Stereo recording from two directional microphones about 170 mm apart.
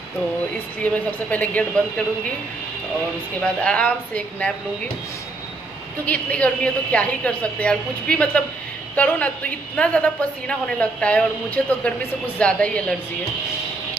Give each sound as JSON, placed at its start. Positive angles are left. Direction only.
{"t": 0.8, "sound": "a man's voice", "side_deg": 10}
{"t": 3.3, "sound": "a man's voice", "side_deg": 5}
{"t": 6.0, "sound": "a man's voice", "side_deg": 10}